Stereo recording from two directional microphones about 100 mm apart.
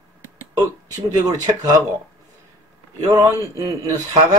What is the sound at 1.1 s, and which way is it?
Speech, 40° right (ahead or behind).